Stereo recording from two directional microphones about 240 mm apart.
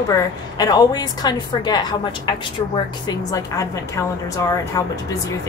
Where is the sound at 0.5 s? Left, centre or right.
Centre.